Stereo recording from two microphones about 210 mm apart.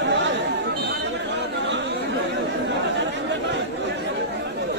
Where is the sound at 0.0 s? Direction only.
60° right (ahead or behind).